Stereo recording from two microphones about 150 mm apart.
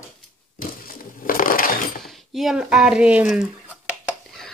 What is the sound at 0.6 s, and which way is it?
Crushing, 70° left (ahead or behind).